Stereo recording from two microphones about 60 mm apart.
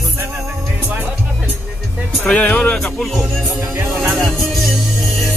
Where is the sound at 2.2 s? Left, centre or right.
Centre.